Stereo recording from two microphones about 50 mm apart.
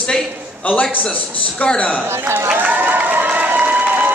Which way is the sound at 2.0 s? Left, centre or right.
Right.